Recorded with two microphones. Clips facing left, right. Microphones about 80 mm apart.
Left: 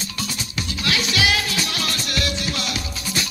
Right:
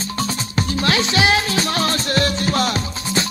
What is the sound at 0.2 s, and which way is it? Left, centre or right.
Music, right.